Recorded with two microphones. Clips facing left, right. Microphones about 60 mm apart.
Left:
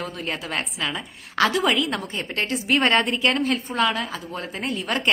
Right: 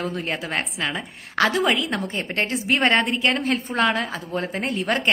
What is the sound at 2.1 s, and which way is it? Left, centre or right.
Speech, right.